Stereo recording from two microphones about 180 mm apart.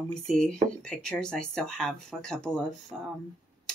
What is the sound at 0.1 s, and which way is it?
Speech, 5° left (ahead or behind).